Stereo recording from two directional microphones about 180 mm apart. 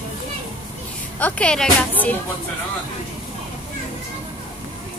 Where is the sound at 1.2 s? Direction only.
5° left (ahead or behind).